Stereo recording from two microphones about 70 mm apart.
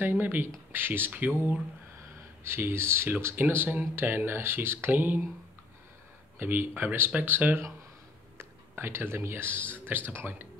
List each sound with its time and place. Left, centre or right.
0.0 s speech: right
6.4 s speech: right